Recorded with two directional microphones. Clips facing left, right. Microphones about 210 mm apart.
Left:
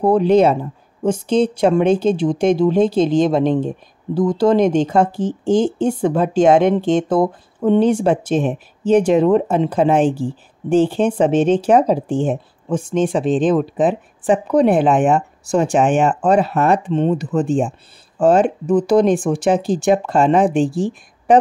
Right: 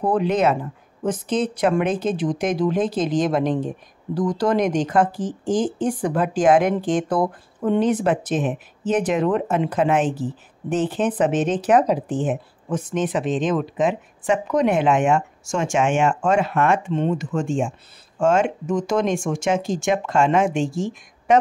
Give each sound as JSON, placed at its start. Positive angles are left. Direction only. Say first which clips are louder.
{"t": 0.0, "sound": "a woman's voice", "louder": "left 7 dB", "side_deg": 30}